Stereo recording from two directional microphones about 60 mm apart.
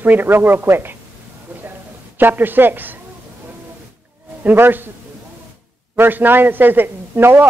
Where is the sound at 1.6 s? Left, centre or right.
Right.